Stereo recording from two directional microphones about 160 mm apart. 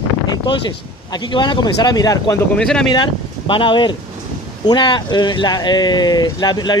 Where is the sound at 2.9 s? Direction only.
30° left (ahead or behind).